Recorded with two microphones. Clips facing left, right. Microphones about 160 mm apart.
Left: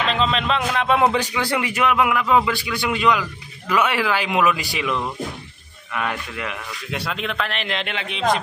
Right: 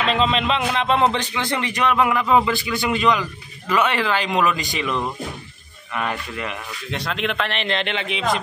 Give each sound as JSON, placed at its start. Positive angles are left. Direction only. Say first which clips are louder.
{"t": 0.1, "sound": "a man's voice", "louder": "right 1 dB", "side_deg": 0}
{"t": 0.9, "sound": "a man's voice", "louder": "left 3 dB", "side_deg": 10}